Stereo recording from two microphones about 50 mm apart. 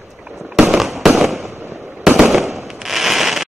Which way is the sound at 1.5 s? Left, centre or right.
Right.